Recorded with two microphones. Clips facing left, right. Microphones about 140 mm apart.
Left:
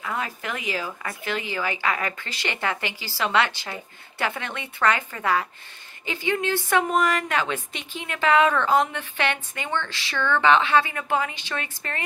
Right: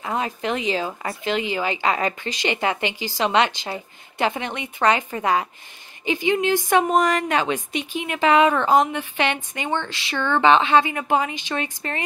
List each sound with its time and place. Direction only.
0.0 s speech: 20° right (ahead or behind)